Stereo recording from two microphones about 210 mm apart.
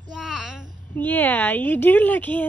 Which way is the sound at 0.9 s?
10° left (ahead or behind).